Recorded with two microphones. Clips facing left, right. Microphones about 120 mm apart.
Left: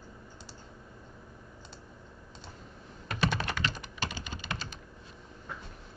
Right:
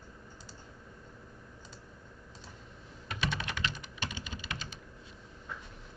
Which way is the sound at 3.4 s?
40° left (ahead or behind).